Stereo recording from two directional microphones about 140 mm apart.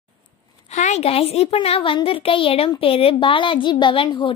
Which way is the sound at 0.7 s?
55° left (ahead or behind).